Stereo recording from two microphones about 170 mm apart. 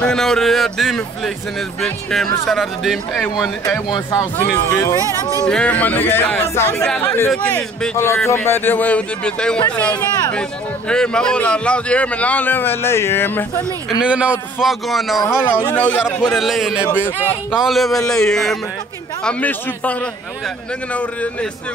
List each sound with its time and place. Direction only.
0.0 s speech: 5° left (ahead or behind)
3.9 s speech: 20° left (ahead or behind); by 9.6 s 5° left (ahead or behind)
10.9 s speech: 5° left (ahead or behind)
14.0 s speech: 5° right (ahead or behind)